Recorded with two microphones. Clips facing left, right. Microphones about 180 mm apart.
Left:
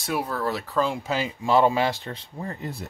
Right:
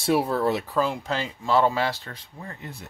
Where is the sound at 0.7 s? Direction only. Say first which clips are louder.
Even; centre (ahead or behind); by 2.2 s 20° left (ahead or behind).